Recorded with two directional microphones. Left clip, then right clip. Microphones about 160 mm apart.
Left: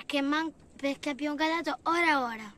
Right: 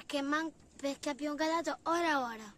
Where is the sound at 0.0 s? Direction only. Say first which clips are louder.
Left 5 dB; 40° left (ahead or behind); by 2.5 s 20° left (ahead or behind).